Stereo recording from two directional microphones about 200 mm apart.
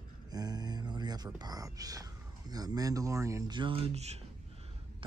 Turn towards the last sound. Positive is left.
turn(degrees=-30)  # may be behind; listen again after turning